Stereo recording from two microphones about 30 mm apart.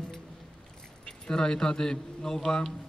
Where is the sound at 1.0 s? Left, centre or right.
Left.